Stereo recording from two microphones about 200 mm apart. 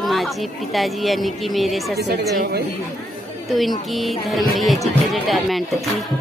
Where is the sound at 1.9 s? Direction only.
55° right (ahead or behind).